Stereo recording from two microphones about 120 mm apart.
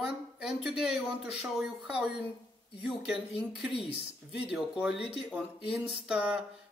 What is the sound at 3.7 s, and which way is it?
Speech, 55° left (ahead or behind).